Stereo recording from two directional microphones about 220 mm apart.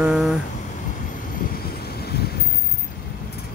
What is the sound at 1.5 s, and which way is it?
Vehicle, 45° left (ahead or behind).